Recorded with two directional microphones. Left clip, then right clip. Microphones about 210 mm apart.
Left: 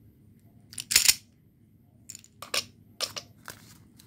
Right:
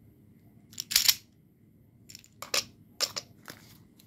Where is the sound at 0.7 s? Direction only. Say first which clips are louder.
Left 2 dB; 10° left (ahead or behind).